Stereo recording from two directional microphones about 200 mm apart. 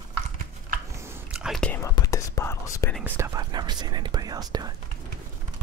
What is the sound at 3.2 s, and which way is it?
Whispering, 20° right (ahead or behind).